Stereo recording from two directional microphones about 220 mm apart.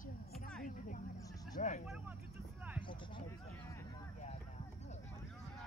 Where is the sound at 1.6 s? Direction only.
35° left (ahead or behind).